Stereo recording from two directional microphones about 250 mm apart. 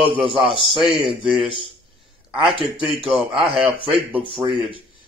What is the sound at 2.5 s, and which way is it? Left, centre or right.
Speech, right.